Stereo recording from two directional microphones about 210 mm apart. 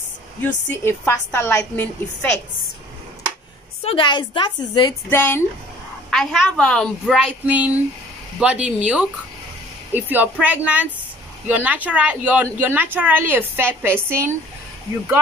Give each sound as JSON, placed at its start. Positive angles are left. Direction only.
{"t": 0.7, "sound": "a woman's voice", "side_deg": 10}
{"t": 3.8, "sound": "a woman's voice", "side_deg": 25}
{"t": 5.1, "sound": "a woman's voice", "side_deg": 10}